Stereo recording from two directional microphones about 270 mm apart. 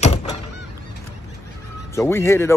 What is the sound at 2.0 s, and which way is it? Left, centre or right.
Speech, centre.